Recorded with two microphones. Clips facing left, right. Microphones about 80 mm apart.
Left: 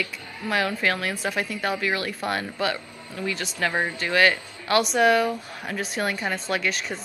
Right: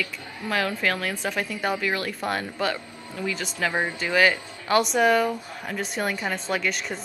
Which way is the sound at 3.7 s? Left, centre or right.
Centre.